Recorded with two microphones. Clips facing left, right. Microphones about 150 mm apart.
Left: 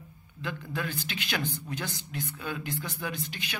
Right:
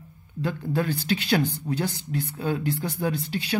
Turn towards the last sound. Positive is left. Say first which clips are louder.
# right 9 dB
turn(degrees=-35)  # may be behind; listen again after turning